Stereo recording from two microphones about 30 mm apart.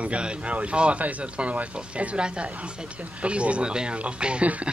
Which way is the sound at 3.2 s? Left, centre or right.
Right.